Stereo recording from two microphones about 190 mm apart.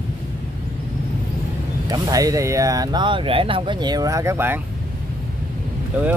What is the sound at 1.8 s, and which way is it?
Speech, 20° right (ahead or behind).